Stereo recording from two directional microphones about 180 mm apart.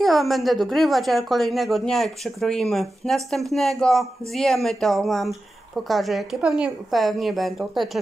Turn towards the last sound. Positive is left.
turn(degrees=0)  # may be behind; listen again after turning